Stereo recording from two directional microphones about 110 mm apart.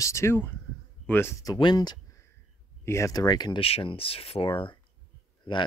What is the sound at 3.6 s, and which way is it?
Speech, 55° left (ahead or behind).